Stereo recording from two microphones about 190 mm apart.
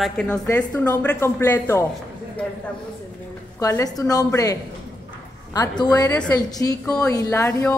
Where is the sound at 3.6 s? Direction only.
15° left (ahead or behind).